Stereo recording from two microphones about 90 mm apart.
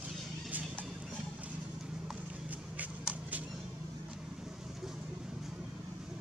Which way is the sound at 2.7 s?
15° right (ahead or behind).